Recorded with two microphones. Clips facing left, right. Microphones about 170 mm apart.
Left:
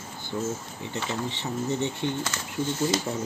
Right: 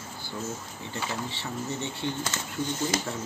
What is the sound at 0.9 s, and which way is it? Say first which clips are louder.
Speech: left 3 dB; 20° left (ahead or behind).